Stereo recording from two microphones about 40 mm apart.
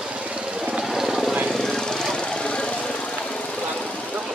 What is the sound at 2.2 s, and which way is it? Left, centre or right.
Vehicle, left.